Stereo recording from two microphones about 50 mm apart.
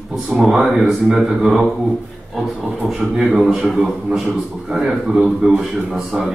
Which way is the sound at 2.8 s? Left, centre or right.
Centre.